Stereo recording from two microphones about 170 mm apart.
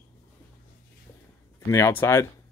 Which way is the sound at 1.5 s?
15° left (ahead or behind).